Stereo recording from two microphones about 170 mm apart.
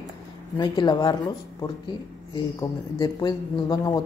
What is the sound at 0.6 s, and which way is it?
Speech, 25° left (ahead or behind).